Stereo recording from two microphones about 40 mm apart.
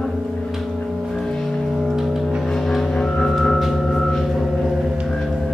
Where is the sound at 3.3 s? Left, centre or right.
Centre.